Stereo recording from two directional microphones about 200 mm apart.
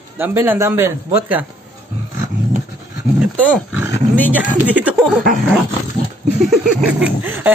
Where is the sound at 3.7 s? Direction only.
10° right (ahead or behind).